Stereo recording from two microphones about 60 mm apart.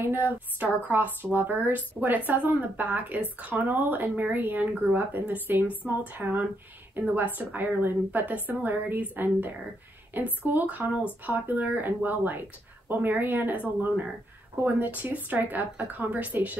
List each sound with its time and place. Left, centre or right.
0.0 s a woman's voice: right